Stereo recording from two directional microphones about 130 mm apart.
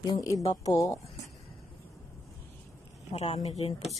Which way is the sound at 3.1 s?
55° left (ahead or behind).